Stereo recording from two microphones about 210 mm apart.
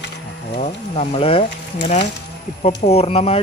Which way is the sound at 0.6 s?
30° left (ahead or behind).